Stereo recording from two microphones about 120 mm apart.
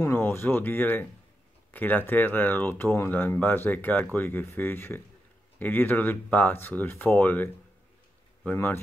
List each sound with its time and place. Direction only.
0.0 s speech: 20° left (ahead or behind)
8.5 s speech: 15° left (ahead or behind)